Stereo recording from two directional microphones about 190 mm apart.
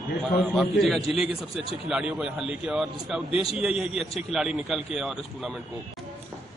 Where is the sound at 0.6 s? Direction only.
Centre (ahead or behind).